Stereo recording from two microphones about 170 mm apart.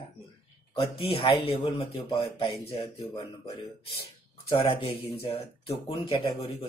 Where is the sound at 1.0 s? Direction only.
35° left (ahead or behind).